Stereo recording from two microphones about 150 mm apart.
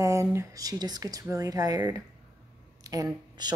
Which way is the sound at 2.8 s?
25° right (ahead or behind).